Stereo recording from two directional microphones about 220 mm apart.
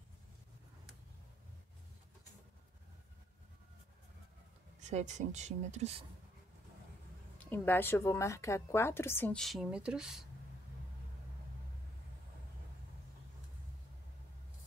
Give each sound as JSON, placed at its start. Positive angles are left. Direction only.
{"t": 4.7, "sound": "speech", "side_deg": -30}
{"t": 7.3, "sound": "a woman's voice", "side_deg": 10}